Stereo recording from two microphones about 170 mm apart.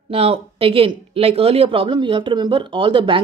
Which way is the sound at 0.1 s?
35° right (ahead or behind).